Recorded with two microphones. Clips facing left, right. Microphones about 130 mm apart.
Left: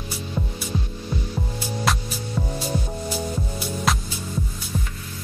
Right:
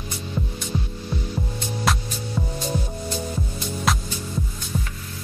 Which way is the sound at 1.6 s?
5° left (ahead or behind).